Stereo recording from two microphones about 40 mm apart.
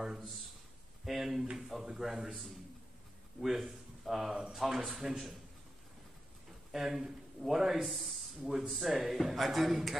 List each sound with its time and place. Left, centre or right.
1.0 s a man's voice: centre
6.7 s a man's voice: centre